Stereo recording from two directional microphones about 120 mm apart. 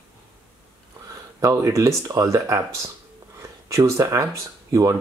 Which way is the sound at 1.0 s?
30° right (ahead or behind).